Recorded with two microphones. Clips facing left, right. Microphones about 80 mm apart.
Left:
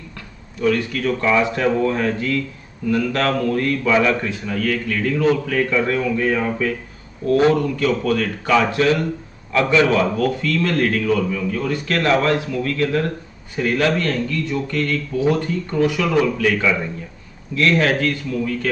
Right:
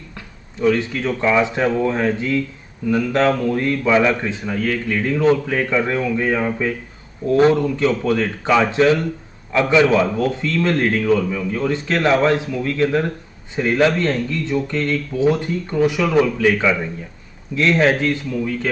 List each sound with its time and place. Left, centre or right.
0.6 s a man's voice: right